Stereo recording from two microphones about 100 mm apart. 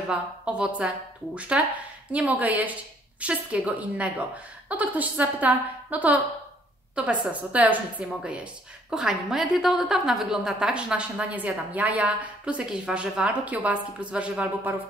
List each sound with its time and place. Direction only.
0.1 s a woman's voice: 10° right (ahead or behind)